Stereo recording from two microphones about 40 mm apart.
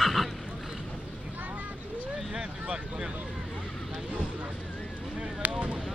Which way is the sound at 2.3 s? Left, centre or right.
Centre.